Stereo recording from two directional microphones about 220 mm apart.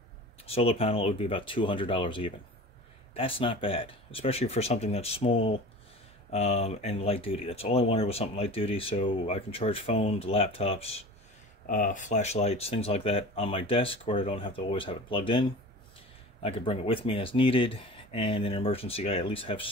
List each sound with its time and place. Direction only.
0.5 s speech: 25° left (ahead or behind)
16.4 s speech: 25° left (ahead or behind)